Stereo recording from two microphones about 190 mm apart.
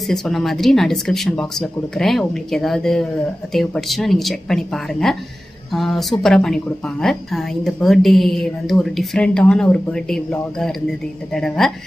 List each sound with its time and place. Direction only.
0.0 s a woman's voice: centre (ahead or behind)